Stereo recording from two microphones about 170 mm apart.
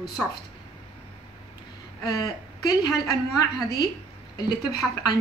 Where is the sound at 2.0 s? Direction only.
20° left (ahead or behind).